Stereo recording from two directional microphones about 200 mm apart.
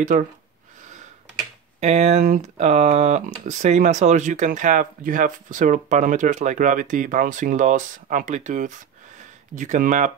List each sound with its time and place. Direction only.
0.1 s speech: 40° right (ahead or behind)
1.8 s speech: 35° right (ahead or behind)